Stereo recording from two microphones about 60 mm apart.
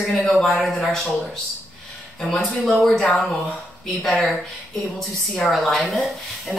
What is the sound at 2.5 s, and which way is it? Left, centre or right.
Speech, left.